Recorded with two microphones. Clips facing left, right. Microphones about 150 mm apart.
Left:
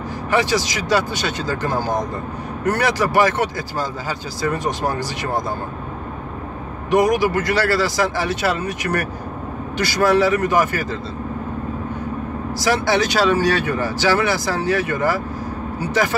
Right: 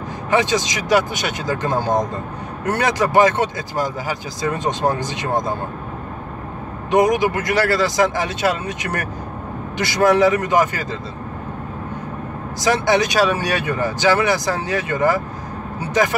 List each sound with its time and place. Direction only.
0.3 s speech: 20° right (ahead or behind)
6.9 s speech: 20° right (ahead or behind)
12.5 s speech: 20° right (ahead or behind)